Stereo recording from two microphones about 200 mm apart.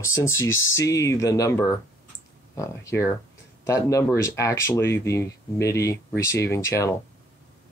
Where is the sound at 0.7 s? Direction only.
15° left (ahead or behind).